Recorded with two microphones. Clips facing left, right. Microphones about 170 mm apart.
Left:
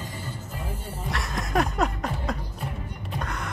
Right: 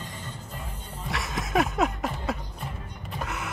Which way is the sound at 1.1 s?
Centre (ahead or behind).